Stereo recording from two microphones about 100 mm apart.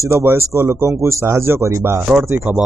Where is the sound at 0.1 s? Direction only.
25° right (ahead or behind).